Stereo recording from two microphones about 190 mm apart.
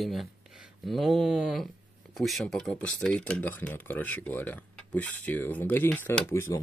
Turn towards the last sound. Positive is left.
turn(degrees=15)  # may be behind; listen again after turning